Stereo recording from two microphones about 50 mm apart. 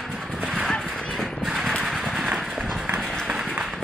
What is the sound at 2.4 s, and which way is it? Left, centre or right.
Run, centre.